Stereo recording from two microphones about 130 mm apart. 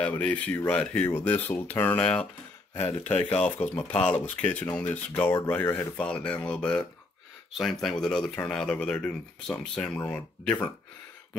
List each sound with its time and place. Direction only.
0.0 s speech: 10° left (ahead or behind)
2.8 s speech: 50° left (ahead or behind)
3.1 s speech: 10° left (ahead or behind)
8.0 s speech: 5° left (ahead or behind)